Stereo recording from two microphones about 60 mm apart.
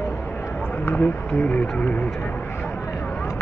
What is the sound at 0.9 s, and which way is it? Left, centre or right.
Insect, left.